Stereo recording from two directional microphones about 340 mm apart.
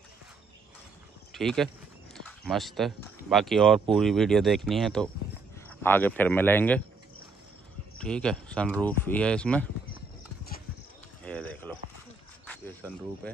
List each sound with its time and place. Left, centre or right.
1.3 s speech: centre
8.0 s speech: centre
11.2 s a sound: centre
12.4 s cricket: centre